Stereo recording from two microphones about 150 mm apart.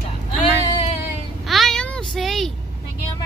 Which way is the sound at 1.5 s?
Centre (ahead or behind).